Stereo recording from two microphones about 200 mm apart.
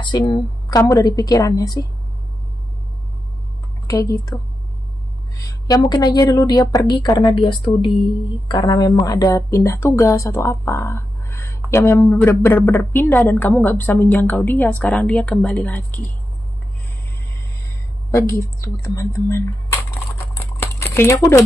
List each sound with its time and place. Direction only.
0.0 s a woman's voice: 20° left (ahead or behind)
3.8 s a woman's voice: 15° left (ahead or behind)
18.1 s camera: 15° left (ahead or behind)